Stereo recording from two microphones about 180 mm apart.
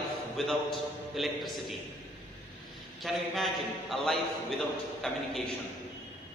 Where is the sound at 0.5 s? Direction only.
Centre (ahead or behind).